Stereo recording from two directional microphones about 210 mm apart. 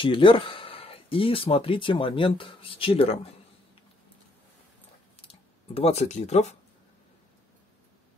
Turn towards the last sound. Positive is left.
turn(degrees=30)  # may be behind; listen again after turning